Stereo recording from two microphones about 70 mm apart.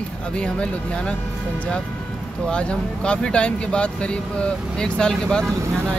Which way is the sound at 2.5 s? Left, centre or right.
Centre.